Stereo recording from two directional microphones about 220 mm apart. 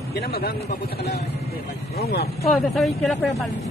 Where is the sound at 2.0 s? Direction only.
45° left (ahead or behind).